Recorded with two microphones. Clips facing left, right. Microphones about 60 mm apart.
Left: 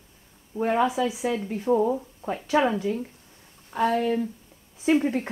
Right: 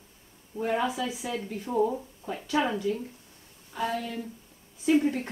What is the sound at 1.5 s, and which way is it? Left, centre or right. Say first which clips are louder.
Speech: left 4 dB; left.